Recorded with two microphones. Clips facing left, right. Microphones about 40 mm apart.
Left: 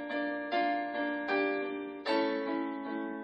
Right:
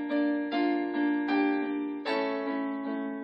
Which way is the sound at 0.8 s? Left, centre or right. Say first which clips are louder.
Right 6 dB; centre.